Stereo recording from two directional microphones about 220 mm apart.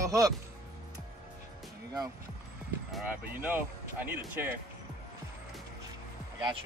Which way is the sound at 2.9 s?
5° right (ahead or behind).